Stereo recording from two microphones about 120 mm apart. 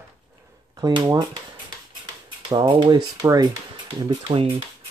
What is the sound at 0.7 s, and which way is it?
Speech, 35° right (ahead or behind).